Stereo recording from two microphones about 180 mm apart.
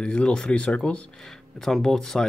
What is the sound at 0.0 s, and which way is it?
Speech, 5° left (ahead or behind).